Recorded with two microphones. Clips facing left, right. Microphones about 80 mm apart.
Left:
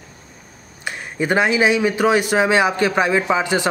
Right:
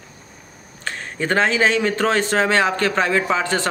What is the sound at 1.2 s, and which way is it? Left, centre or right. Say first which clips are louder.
A man's voice: left 1 dB; centre.